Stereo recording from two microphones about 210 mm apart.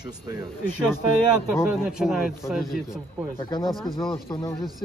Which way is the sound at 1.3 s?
5° right (ahead or behind).